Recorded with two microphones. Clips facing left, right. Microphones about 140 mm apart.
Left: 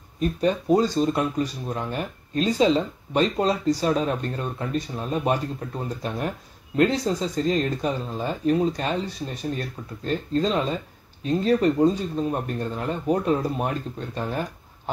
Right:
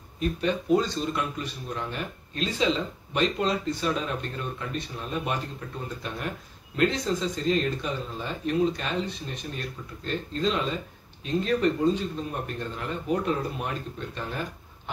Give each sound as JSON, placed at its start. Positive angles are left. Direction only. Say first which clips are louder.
{"t": 0.2, "sound": "speech", "louder": "left 4 dB", "side_deg": 40}
{"t": 10.0, "sound": "speech", "louder": "left 4 dB", "side_deg": 40}